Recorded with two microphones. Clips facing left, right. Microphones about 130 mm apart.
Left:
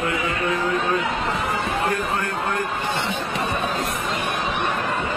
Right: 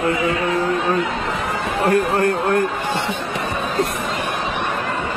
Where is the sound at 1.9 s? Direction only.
55° right (ahead or behind).